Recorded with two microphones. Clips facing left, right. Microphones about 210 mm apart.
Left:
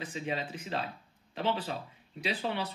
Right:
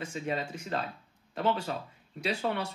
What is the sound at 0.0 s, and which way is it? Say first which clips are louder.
Speech: right 2 dB; 45° right (ahead or behind).